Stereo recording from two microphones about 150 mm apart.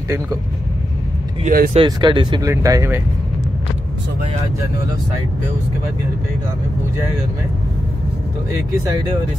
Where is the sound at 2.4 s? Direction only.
20° right (ahead or behind).